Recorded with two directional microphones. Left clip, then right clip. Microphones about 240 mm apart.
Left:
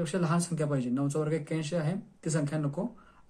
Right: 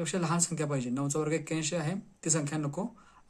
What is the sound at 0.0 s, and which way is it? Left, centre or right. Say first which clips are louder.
Speech: even; right.